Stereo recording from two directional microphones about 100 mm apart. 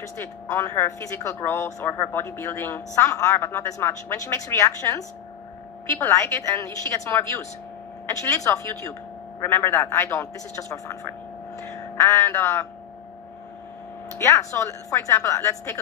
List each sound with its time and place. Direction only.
0.0 s a man's voice: 30° left (ahead or behind)
14.1 s speech: 30° left (ahead or behind)